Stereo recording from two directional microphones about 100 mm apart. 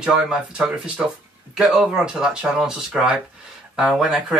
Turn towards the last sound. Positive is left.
turn(degrees=0)  # may be behind; listen again after turning